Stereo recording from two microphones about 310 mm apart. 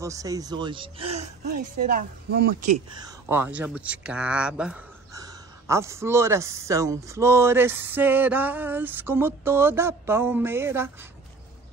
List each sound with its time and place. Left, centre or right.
0.0 s speech: centre; by 2.5 s right
3.0 s speech: centre